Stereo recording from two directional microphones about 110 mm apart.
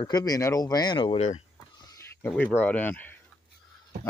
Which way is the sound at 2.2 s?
10° left (ahead or behind).